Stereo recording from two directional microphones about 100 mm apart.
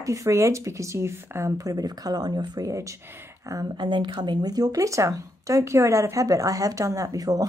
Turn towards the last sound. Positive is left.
turn(degrees=-35)  # may be behind; listen again after turning